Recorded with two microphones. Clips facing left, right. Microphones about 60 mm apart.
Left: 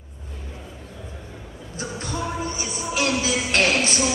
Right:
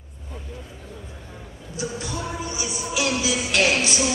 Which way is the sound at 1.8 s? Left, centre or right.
Left.